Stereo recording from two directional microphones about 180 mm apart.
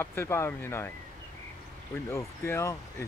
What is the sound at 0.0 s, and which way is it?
Speech, 15° left (ahead or behind).